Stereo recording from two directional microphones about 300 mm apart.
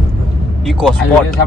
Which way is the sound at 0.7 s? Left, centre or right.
Centre.